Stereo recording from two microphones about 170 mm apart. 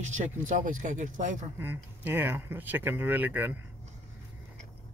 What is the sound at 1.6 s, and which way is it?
Speech, 10° right (ahead or behind).